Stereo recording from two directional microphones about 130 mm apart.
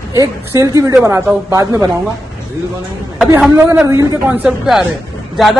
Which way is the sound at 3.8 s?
25° right (ahead or behind).